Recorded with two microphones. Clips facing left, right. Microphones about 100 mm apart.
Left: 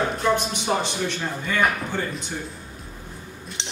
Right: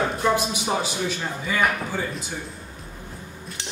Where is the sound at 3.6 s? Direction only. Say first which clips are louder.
Even; 20° left (ahead or behind).